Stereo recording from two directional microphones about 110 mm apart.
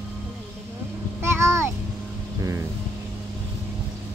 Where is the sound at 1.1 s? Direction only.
25° right (ahead or behind).